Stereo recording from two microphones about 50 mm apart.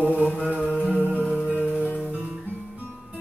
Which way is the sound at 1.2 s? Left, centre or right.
Left.